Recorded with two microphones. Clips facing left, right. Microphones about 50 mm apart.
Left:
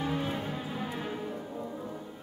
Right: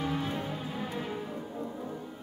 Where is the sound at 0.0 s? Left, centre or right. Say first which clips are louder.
Even; centre.